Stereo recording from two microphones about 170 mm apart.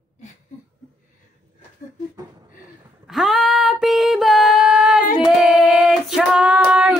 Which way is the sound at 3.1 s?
Centre (ahead or behind).